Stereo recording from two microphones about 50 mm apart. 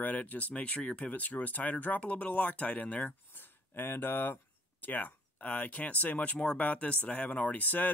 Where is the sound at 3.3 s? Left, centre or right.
Left.